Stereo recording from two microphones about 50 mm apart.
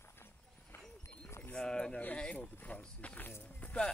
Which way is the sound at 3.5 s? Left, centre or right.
Left.